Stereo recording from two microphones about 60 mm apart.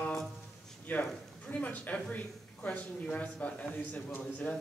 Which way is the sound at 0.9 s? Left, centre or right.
Left.